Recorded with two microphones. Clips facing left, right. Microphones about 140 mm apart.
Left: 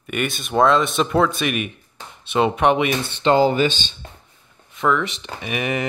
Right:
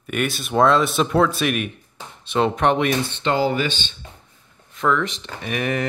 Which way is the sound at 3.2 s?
25° left (ahead or behind).